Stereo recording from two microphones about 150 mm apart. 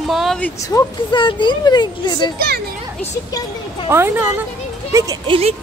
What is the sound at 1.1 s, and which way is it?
Speech, 30° left (ahead or behind).